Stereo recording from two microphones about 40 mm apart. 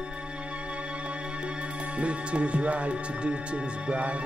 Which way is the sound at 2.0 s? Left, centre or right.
Right.